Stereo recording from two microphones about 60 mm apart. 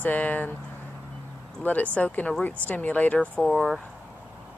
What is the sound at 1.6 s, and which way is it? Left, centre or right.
Speech, left.